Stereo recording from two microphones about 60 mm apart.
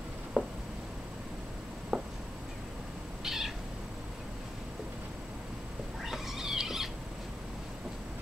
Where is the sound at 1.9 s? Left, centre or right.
Centre.